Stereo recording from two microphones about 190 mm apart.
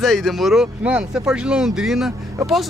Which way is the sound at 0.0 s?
Centre (ahead or behind).